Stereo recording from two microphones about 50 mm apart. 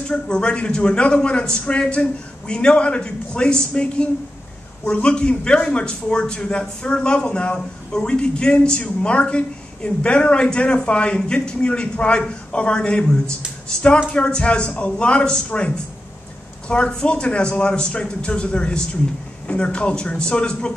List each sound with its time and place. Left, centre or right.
0.1 s a man's voice: centre